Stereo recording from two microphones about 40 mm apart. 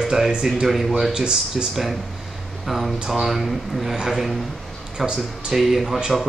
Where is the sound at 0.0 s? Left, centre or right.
Centre.